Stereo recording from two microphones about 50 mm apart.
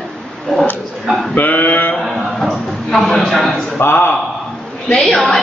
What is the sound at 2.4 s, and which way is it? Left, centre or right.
A man's voice, centre.